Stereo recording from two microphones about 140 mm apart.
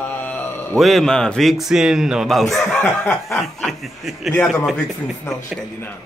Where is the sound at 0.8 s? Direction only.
Centre (ahead or behind).